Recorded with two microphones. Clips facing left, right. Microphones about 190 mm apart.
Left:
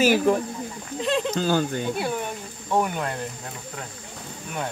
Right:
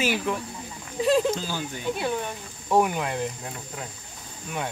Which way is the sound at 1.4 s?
60° left (ahead or behind).